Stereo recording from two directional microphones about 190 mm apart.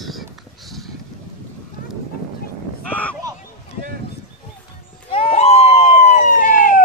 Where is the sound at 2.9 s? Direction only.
5° left (ahead or behind).